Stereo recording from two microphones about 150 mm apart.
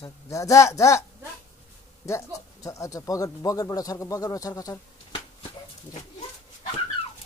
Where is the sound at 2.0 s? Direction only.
20° left (ahead or behind).